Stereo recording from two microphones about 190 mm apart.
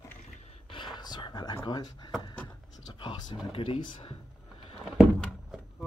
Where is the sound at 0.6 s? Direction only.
25° left (ahead or behind).